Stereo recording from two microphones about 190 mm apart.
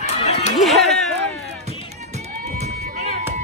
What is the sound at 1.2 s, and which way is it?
Music, 35° right (ahead or behind).